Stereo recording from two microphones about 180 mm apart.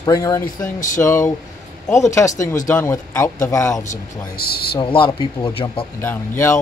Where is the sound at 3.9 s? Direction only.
55° left (ahead or behind).